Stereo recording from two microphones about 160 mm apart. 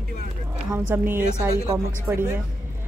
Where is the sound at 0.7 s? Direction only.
15° right (ahead or behind).